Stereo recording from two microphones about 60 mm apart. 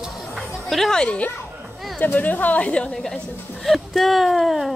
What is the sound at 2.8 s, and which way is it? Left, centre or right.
Speech, centre.